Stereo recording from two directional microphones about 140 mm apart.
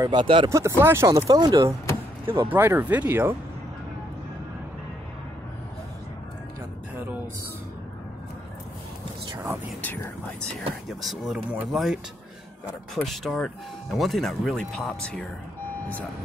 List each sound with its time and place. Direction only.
0.0 s speech: 35° right (ahead or behind)
0.5 s speech: 20° right (ahead or behind)
2.3 s speech: 15° right (ahead or behind)
9.3 s speech: 20° right (ahead or behind)
9.8 s speech: 15° left (ahead or behind)
10.9 s speech: centre (ahead or behind)